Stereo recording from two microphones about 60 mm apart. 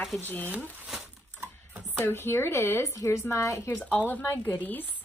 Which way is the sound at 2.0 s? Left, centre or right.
Left.